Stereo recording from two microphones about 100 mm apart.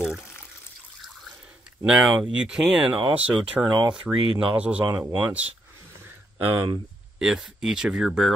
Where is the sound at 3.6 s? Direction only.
45° right (ahead or behind).